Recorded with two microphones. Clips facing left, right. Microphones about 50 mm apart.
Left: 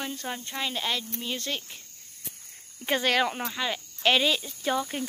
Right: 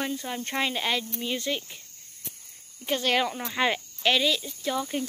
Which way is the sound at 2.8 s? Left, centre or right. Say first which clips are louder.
Left 1 dB; centre.